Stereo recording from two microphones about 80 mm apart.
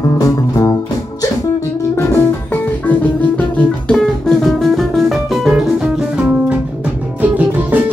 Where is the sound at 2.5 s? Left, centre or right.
Left.